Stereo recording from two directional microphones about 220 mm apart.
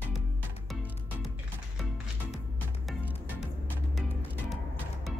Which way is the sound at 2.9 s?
Centre (ahead or behind).